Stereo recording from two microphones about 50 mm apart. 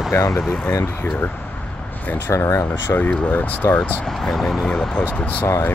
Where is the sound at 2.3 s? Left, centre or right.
Left.